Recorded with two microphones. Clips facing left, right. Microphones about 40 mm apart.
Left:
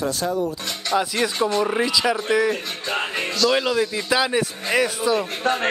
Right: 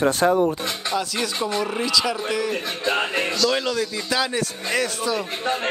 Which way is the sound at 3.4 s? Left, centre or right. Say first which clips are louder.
Left 6 dB; centre.